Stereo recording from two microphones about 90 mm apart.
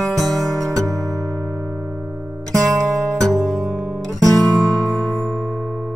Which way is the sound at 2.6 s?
5° left (ahead or behind).